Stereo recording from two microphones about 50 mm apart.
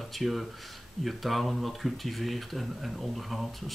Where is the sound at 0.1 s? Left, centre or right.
Centre.